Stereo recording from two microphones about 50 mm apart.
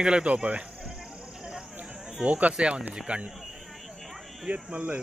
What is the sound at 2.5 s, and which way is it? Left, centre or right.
Speech, centre.